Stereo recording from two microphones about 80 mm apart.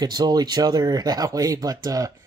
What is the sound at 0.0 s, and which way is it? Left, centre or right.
Speech, right.